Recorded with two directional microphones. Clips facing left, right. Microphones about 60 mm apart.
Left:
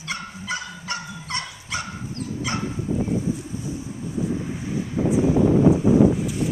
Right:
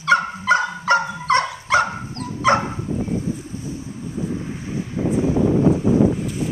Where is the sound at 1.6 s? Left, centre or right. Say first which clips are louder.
Right 12 dB; right.